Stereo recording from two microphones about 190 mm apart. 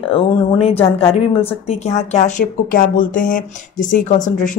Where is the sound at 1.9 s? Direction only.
40° left (ahead or behind).